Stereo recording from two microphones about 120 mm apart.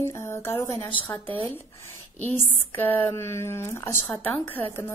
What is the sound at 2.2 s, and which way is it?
Speech, 15° left (ahead or behind).